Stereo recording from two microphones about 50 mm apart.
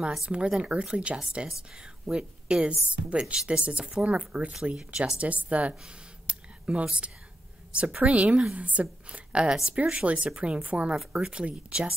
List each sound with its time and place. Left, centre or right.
0.2 s a woman's voice: centre
4.7 s speech: centre
5.2 s a woman's voice: right